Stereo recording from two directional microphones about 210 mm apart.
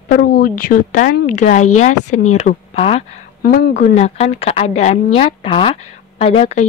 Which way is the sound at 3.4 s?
45° left (ahead or behind).